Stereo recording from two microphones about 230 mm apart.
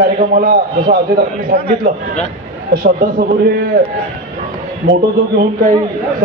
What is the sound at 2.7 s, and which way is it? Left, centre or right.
Speech, right.